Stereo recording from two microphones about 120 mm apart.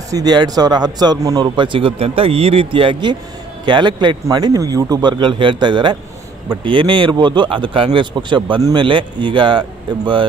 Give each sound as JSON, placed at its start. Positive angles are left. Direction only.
{"t": 0.1, "sound": "speech", "side_deg": -35}